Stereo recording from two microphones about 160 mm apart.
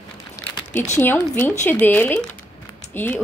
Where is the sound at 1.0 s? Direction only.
15° left (ahead or behind).